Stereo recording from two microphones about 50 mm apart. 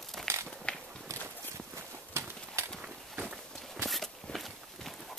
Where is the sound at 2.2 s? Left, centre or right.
Right.